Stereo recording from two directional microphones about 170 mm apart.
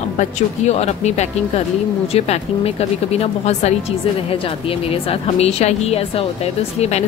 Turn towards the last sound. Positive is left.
turn(degrees=40)  # may be behind; listen again after turning